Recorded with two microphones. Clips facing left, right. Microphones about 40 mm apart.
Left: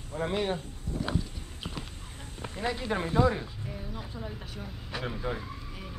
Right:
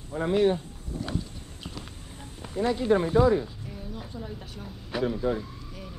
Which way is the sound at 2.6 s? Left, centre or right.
Centre.